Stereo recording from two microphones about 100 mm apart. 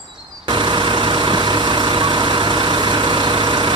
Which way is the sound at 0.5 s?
50° right (ahead or behind).